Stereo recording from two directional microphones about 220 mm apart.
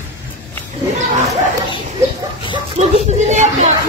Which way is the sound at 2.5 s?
30° right (ahead or behind).